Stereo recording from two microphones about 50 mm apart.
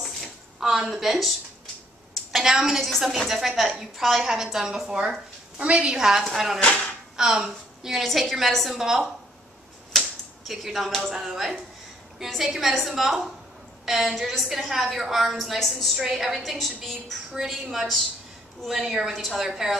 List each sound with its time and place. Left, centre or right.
0.0 s a sound: centre
2.3 s a woman's voice: centre
5.6 s a woman's voice: right
8.0 s a woman's voice: centre
9.9 s a sound: centre
11.1 s a woman's voice: centre